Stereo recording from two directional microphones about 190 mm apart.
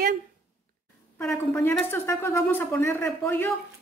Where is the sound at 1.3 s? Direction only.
15° left (ahead or behind).